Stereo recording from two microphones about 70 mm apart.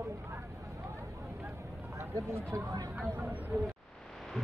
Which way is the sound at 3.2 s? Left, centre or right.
Right.